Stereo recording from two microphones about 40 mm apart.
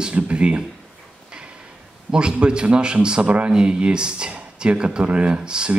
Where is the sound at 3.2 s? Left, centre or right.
Right.